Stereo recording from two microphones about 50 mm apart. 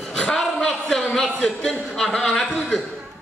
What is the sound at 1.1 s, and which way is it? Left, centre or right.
A man's voice, centre.